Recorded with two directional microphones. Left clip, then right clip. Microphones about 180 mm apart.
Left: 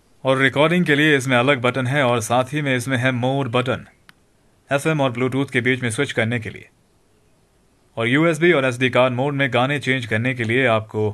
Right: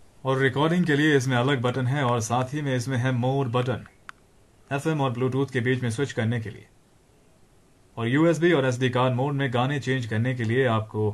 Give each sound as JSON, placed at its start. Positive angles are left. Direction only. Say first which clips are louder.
{"t": 0.2, "sound": "speech", "louder": "left 7 dB", "side_deg": 50}
{"t": 7.9, "sound": "speech", "louder": "left 5 dB", "side_deg": 50}